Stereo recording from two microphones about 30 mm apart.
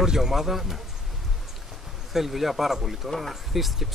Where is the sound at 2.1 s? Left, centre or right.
Centre.